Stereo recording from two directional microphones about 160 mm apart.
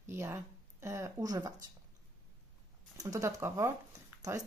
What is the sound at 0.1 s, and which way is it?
Speech, 15° right (ahead or behind).